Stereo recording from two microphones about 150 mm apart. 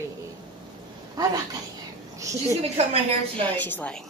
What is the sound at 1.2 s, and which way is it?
A woman's voice, 25° right (ahead or behind).